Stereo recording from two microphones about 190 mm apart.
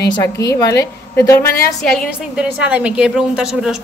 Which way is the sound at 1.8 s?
Centre (ahead or behind).